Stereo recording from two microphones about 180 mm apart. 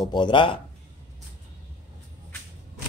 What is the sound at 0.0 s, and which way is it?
Speech, 25° left (ahead or behind).